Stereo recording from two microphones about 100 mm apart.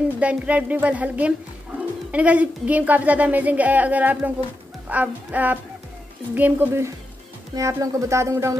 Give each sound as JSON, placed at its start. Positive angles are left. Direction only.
{"t": 0.2, "sound": "speech", "side_deg": -15}